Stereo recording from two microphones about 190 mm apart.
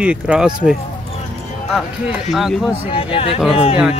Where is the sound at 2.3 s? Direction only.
Centre (ahead or behind).